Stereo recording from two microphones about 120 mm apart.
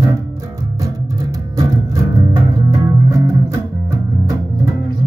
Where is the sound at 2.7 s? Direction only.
25° right (ahead or behind).